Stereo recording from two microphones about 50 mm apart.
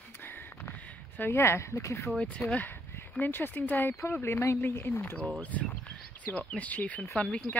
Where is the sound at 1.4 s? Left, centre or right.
Left.